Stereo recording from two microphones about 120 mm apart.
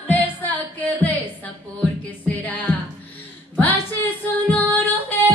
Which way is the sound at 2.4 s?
15° left (ahead or behind).